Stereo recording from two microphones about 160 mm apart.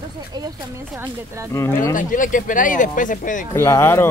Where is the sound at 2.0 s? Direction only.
55° left (ahead or behind).